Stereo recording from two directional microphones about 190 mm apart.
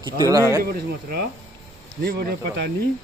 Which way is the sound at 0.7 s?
55° right (ahead or behind).